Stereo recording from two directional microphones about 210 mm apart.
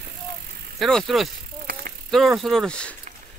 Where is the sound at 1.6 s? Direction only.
45° right (ahead or behind).